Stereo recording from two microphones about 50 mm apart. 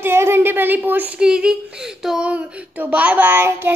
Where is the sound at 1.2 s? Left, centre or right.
Centre.